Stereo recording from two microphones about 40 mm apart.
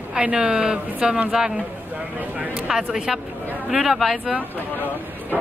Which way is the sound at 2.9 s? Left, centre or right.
Centre.